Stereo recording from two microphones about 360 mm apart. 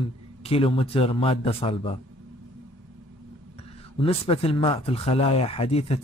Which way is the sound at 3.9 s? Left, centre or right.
Centre.